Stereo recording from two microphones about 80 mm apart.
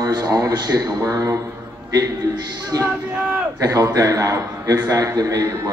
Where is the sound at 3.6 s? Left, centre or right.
Right.